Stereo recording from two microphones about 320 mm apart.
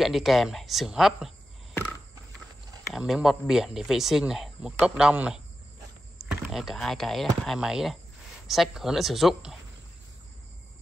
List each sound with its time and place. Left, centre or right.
0.0 s speech: centre